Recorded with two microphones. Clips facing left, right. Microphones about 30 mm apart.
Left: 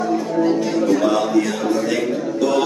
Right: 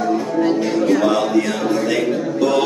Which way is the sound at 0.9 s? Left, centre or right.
Centre.